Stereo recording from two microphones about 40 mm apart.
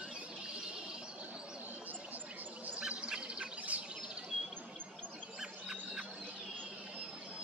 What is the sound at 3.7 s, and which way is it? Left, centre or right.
Bird, right.